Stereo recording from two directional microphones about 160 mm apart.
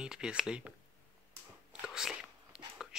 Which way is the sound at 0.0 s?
5° right (ahead or behind).